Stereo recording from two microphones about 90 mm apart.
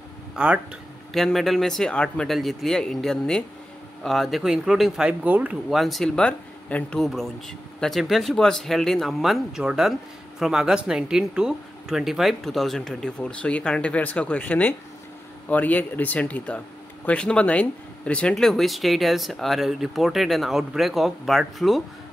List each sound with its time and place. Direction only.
0.4 s speech: 10° right (ahead or behind)
1.1 s speech: centre (ahead or behind)
5.2 s speech: 20° right (ahead or behind)
5.7 s speech: centre (ahead or behind)
18.3 s speech: 5° left (ahead or behind)